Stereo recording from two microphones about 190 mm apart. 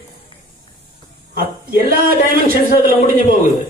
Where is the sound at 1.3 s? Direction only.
50° right (ahead or behind).